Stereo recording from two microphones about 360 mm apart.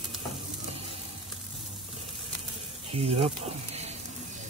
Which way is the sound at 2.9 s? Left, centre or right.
Centre.